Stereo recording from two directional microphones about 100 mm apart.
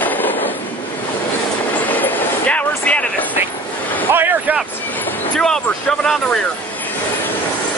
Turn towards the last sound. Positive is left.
turn(degrees=5)  # may be behind; listen again after turning